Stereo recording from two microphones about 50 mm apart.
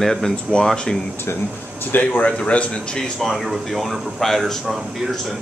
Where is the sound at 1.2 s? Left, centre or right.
Left.